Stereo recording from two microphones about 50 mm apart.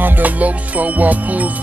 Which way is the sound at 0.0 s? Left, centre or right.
Right.